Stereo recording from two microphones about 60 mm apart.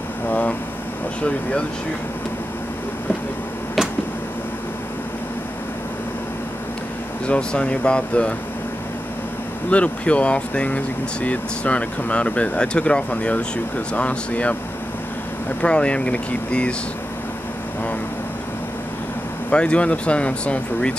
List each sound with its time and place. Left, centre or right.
0.3 s air conditioning: left
7.2 s speech: centre
9.7 s speech: left
15.6 s speech: centre
19.5 s speech: centre